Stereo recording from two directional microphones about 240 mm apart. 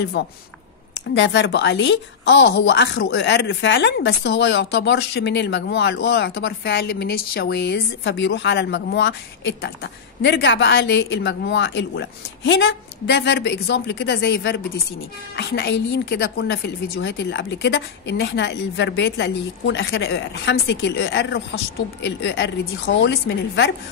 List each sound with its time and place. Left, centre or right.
0.2 s a woman's voice: left